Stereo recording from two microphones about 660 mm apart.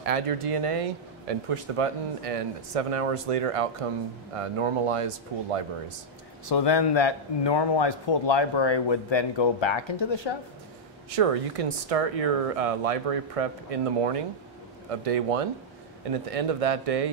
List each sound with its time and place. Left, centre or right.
0.0 s speech: right
6.5 s a man's voice: left
11.1 s speech: right